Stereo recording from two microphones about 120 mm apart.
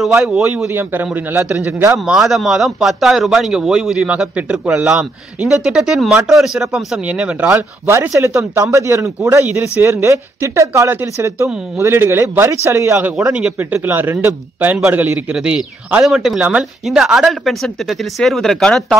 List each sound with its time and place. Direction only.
0.0 s speech: centre (ahead or behind)
0.7 s a man's voice: 15° right (ahead or behind)
2.0 s a man's voice: centre (ahead or behind)